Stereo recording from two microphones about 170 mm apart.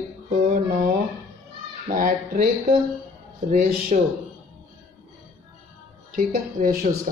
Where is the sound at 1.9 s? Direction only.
55° right (ahead or behind).